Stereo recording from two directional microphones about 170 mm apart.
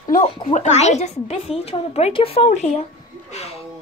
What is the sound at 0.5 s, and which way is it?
Speech, 45° left (ahead or behind).